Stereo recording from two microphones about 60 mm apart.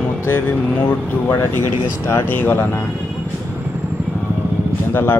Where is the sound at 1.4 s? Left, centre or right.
Left.